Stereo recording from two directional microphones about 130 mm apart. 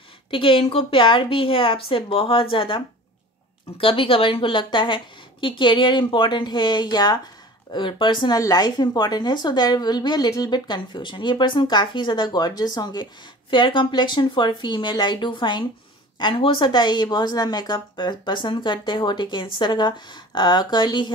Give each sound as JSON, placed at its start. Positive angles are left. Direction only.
{"t": 0.3, "sound": "a woman's voice", "side_deg": 45}